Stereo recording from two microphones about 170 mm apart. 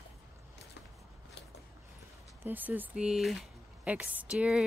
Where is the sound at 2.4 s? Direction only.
10° right (ahead or behind).